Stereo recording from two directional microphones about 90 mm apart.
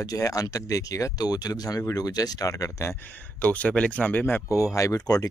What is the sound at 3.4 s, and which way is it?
Speech, 15° left (ahead or behind).